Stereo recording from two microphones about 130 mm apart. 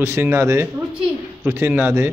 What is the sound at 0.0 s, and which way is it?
A man's voice, 20° right (ahead or behind).